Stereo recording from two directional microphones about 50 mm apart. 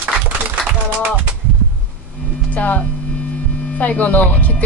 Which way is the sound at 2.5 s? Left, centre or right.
Left.